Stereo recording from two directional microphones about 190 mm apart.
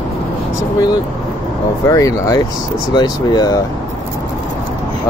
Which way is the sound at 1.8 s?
15° left (ahead or behind).